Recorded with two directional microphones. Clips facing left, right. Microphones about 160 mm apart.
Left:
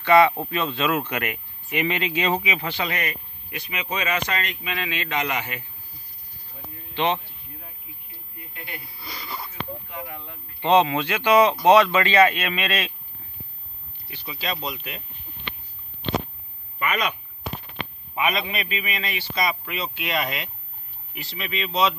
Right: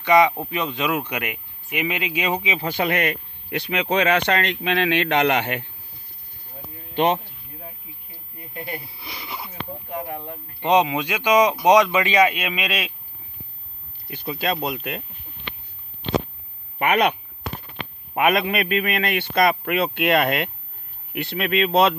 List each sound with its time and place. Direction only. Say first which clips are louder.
0.0 s speech: even; 15° right (ahead or behind)
2.6 s a man's voice: right 6 dB; 50° right (ahead or behind); by 5.7 s 70° right (ahead or behind)
6.9 s a sound: right 4 dB; 45° right (ahead or behind)
8.4 s speech: right 7 dB; 35° right (ahead or behind)
9.0 s speech: right 1 dB; 20° right (ahead or behind)
9.5 s a sound: right 3 dB; 45° right (ahead or behind)
10.6 s speech: even; 15° right (ahead or behind)
14.0 s a man's voice: right 6 dB; 50° right (ahead or behind)
16.7 s speech: right 7 dB; 65° right (ahead or behind)
18.1 s a man's voice: right 6 dB; 55° right (ahead or behind)